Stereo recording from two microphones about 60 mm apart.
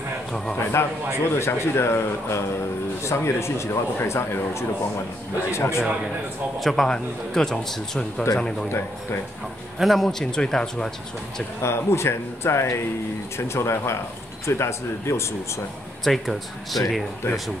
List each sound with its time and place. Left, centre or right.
0.6 s speech: left
6.6 s speech: centre
9.8 s speech: centre
11.6 s speech: left
16.0 s speech: centre